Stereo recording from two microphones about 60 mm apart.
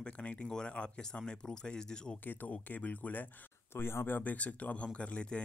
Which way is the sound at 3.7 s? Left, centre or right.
Left.